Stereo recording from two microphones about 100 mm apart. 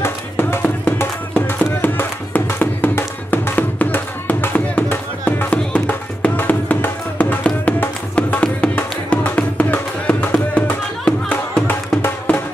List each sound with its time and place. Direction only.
0.0 s music: 25° left (ahead or behind)